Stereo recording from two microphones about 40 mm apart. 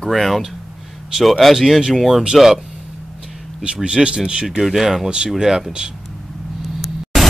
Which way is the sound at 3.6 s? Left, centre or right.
Right.